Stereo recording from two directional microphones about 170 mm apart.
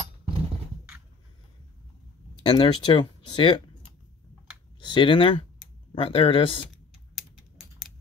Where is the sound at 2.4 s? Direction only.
25° left (ahead or behind).